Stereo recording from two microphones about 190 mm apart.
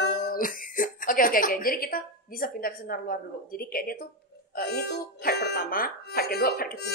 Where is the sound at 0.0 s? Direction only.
50° left (ahead or behind).